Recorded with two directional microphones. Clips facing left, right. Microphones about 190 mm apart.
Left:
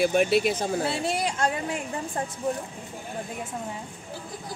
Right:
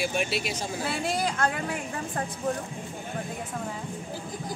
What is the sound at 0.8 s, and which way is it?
Speech, 25° left (ahead or behind).